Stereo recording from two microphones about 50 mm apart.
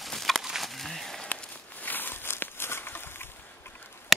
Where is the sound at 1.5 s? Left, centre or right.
Left.